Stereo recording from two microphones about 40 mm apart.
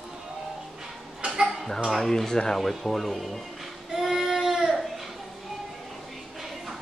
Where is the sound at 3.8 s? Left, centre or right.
Centre.